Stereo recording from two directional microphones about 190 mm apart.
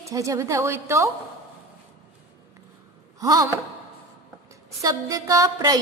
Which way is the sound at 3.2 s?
15° right (ahead or behind).